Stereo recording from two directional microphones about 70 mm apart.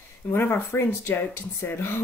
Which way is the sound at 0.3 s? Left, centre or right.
Left.